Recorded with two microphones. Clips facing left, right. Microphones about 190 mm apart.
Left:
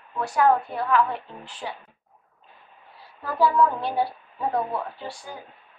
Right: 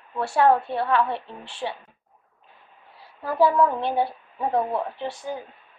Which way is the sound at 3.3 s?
25° right (ahead or behind).